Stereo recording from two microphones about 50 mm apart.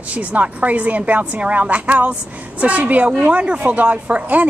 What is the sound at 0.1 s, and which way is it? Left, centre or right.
Speech, right.